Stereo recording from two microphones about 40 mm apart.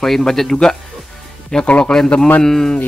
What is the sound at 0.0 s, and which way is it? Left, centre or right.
Speech, centre.